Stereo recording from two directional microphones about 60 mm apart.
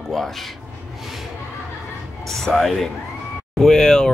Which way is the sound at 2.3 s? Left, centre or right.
Centre.